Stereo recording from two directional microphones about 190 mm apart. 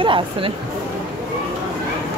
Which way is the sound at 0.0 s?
25° right (ahead or behind).